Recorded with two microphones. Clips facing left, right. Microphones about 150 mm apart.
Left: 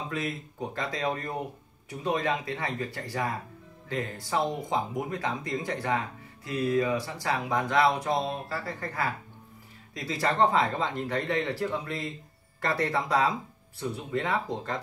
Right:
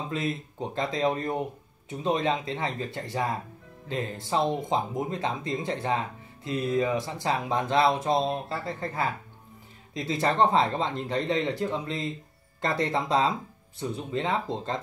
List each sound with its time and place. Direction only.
0.1 s speech: 25° right (ahead or behind)